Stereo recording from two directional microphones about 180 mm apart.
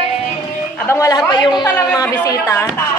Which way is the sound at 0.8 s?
20° left (ahead or behind).